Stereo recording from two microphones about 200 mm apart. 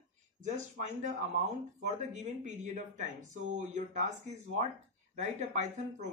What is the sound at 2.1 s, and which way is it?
A man's voice, 35° right (ahead or behind).